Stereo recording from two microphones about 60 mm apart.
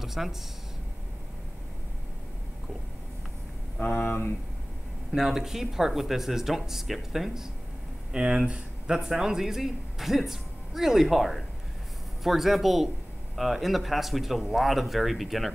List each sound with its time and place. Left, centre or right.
0.0 s speech: centre
3.8 s speech: left
5.1 s speech: centre